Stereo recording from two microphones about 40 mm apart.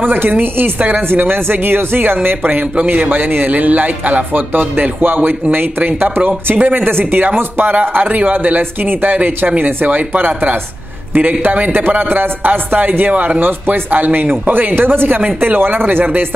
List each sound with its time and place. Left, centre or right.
0.0 s speech: right
7.7 s speech: right
13.1 s speech: right